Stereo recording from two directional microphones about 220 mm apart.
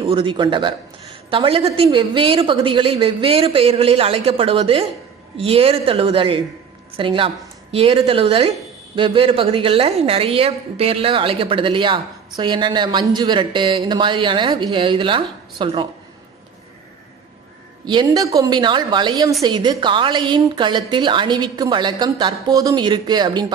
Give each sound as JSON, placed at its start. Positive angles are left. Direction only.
{"t": 0.0, "sound": "speech", "side_deg": -25}
{"t": 17.8, "sound": "speech", "side_deg": -20}